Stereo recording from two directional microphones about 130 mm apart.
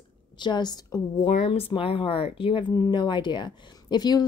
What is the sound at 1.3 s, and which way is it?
A woman's voice, 55° left (ahead or behind).